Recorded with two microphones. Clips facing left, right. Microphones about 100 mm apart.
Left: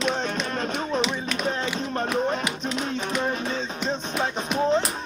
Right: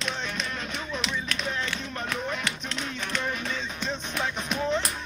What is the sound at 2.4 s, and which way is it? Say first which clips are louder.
Music: left 5 dB; 10° left (ahead or behind).